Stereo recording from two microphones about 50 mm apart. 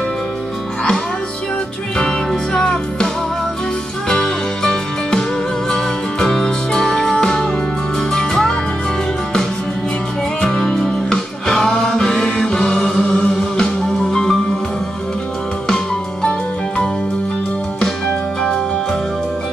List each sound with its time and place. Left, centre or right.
2.0 s music: centre
4.1 s music: centre
10.4 s music: centre
15.7 s music: centre